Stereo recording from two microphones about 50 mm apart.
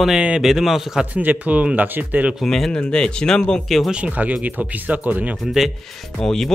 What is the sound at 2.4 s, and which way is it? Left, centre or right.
Speech, centre.